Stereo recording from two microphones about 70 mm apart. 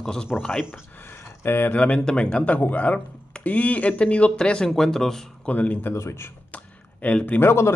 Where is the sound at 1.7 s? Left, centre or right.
Centre.